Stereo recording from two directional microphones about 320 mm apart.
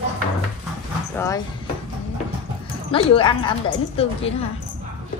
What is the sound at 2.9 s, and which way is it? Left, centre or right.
Speech, centre.